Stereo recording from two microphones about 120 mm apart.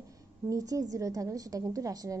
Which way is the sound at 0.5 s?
30° right (ahead or behind).